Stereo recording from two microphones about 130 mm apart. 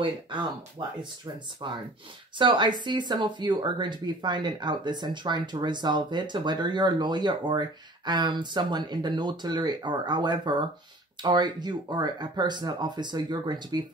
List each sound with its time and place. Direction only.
0.7 s speech: 35° right (ahead or behind)